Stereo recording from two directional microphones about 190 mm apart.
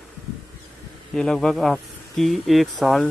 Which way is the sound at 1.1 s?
5° left (ahead or behind).